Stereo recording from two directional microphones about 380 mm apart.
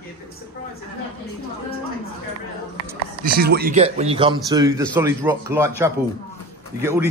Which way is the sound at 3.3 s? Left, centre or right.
Right.